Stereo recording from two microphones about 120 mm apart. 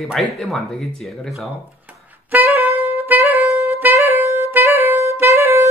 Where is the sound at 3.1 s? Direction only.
15° right (ahead or behind).